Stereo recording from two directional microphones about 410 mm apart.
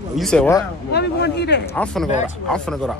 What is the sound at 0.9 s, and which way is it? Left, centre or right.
Speech, left.